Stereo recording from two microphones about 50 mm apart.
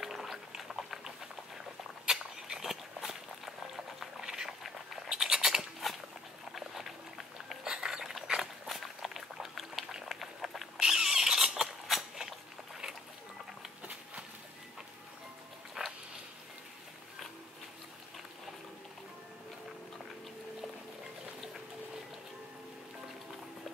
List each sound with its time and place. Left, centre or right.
0.0 s a sound: centre
6.5 s dog: centre
10.8 s rodents: centre
15.8 s dog: centre